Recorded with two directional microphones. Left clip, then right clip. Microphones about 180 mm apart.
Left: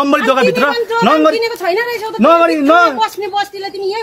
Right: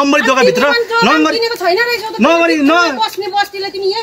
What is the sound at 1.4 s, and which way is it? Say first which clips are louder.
Speech: right 2 dB; 15° left (ahead or behind).